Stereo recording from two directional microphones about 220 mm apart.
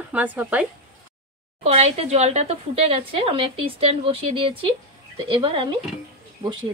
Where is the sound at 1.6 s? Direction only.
25° right (ahead or behind).